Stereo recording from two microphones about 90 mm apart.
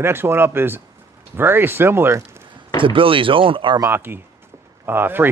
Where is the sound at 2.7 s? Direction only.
75° right (ahead or behind).